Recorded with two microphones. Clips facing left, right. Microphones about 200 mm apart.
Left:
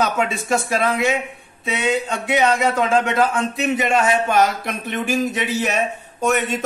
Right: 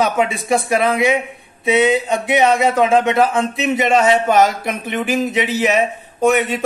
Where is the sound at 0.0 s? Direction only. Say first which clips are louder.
Right 3 dB; 15° right (ahead or behind).